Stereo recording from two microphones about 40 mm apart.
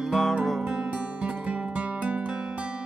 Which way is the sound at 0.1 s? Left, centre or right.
Centre.